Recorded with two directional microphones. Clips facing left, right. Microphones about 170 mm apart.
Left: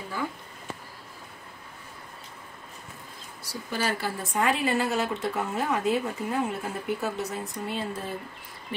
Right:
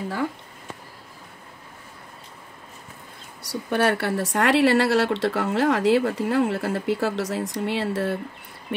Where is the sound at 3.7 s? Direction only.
65° right (ahead or behind).